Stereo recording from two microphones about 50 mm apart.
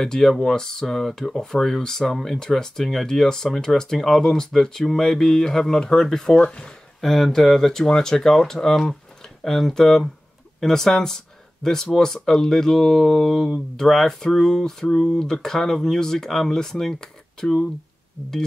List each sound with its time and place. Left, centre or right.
0.0 s speech: centre
6.4 s speech: left
7.0 s speech: centre